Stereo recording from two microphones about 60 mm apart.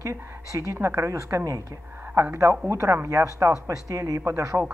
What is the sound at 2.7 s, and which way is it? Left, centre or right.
Speech, right.